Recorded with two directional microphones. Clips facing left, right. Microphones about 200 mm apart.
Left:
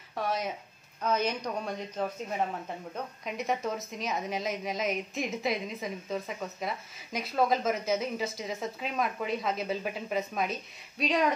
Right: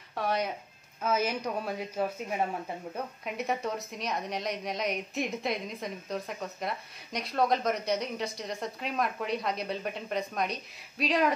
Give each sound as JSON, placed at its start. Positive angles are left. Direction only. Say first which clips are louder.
{"t": 0.1, "sound": "a woman's voice", "louder": "right 1 dB", "side_deg": 0}